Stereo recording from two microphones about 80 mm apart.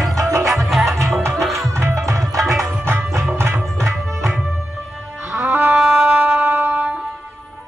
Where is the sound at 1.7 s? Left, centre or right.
Right.